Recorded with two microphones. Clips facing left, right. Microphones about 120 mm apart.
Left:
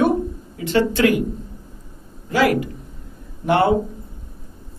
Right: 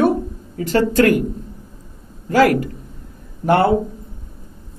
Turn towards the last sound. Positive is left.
turn(degrees=-45)  # may be behind; listen again after turning